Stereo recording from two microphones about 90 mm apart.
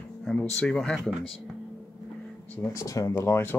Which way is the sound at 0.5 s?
10° left (ahead or behind).